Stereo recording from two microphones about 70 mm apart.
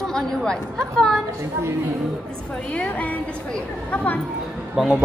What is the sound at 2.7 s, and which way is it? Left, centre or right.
Speech, centre.